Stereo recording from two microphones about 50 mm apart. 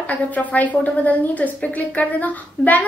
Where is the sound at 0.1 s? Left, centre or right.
Left.